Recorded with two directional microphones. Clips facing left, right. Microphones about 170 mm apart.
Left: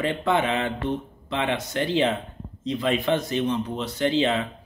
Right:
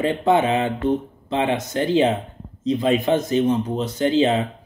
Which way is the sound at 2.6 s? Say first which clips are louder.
Right 5 dB; 20° right (ahead or behind).